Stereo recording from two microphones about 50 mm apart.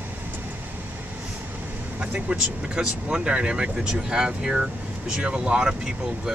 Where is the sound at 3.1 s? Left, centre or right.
Right.